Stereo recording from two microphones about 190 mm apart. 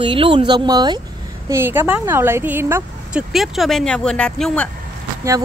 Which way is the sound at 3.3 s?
Centre (ahead or behind).